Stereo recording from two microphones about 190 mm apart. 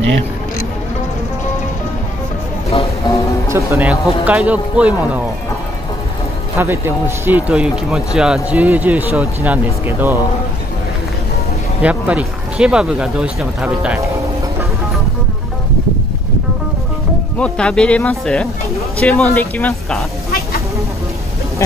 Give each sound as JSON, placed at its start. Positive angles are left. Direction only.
{"t": 3.1, "sound": "music", "side_deg": 25}
{"t": 3.4, "sound": "speech", "side_deg": -15}
{"t": 6.6, "sound": "speech", "side_deg": -10}
{"t": 11.8, "sound": "speech", "side_deg": -5}
{"t": 17.4, "sound": "speech", "side_deg": 5}